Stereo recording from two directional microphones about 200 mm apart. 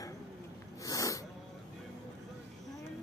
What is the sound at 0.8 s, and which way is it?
Snort, 15° left (ahead or behind).